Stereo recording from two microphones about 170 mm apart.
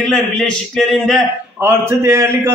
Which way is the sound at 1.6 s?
15° right (ahead or behind).